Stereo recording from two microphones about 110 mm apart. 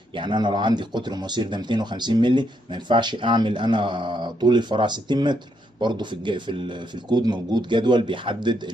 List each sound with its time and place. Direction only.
0.1 s speech: 45° right (ahead or behind)